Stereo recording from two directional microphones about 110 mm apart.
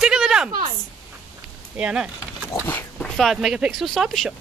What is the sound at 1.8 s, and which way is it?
Speech, 10° right (ahead or behind).